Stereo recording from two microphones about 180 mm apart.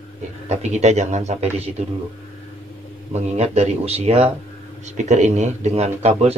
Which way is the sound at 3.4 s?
35° right (ahead or behind).